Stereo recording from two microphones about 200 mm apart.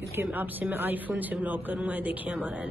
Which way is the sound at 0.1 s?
10° right (ahead or behind).